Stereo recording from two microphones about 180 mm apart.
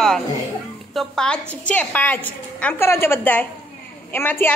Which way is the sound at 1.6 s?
10° left (ahead or behind).